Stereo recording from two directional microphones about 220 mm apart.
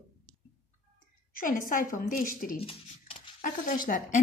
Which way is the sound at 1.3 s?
40° left (ahead or behind).